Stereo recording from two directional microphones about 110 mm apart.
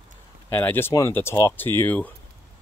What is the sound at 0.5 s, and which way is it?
Speech, 20° left (ahead or behind).